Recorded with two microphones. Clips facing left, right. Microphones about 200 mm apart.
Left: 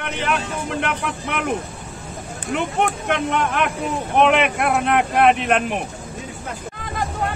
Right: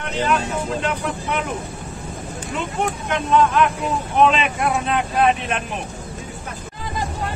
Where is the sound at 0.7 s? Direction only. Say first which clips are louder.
Right 1 dB; 65° left (ahead or behind).